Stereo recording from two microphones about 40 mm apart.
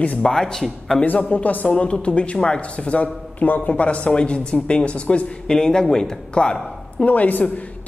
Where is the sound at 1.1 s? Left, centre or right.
Left.